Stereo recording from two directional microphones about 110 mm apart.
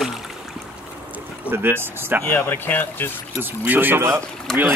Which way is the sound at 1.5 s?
20° right (ahead or behind).